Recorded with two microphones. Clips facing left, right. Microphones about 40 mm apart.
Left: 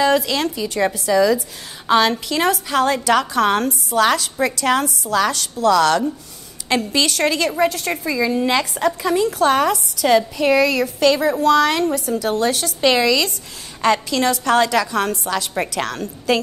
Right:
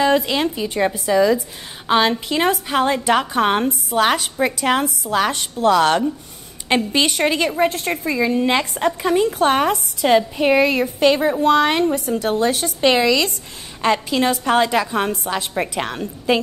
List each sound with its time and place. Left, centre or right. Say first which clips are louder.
0.0 s a woman's voice: even; right